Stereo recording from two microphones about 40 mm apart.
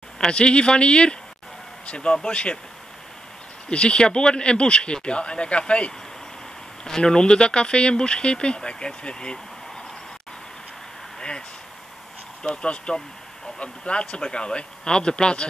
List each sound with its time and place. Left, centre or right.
0.2 s speech: left
3.7 s speech: left
11.1 s a sound: centre
12.4 s speech: left